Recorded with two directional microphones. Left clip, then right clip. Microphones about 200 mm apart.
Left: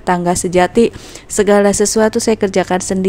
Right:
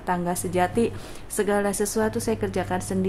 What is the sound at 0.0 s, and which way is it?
A woman's voice, 35° left (ahead or behind).